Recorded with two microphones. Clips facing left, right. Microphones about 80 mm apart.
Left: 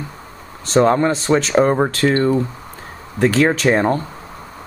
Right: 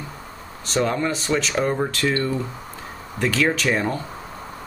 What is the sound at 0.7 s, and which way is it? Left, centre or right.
Speech, left.